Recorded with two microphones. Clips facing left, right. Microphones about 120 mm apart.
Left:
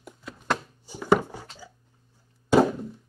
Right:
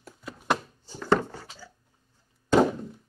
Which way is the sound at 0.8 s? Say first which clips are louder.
Left 4 dB; 10° left (ahead or behind).